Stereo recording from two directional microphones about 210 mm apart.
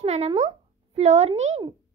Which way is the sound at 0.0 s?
30° right (ahead or behind).